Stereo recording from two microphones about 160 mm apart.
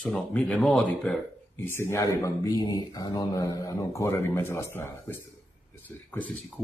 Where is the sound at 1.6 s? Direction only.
15° left (ahead or behind).